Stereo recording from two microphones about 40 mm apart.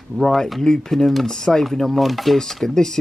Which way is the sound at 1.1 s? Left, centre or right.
Centre.